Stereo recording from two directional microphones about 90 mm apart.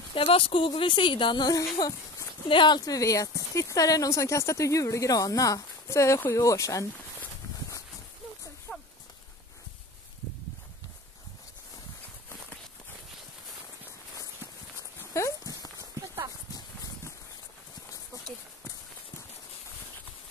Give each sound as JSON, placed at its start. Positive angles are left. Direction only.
{"t": 0.1, "sound": "speech", "side_deg": 75}
{"t": 1.8, "sound": "speech", "side_deg": 40}
{"t": 2.4, "sound": "speech", "side_deg": 65}
{"t": 2.8, "sound": "speech", "side_deg": 40}
{"t": 8.7, "sound": "horse", "side_deg": 0}
{"t": 14.8, "sound": "dog", "side_deg": 35}
{"t": 15.8, "sound": "clip-clop", "side_deg": -25}